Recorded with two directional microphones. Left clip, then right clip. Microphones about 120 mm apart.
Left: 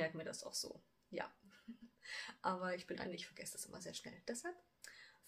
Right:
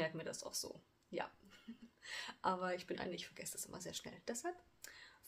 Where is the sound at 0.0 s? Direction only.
30° right (ahead or behind).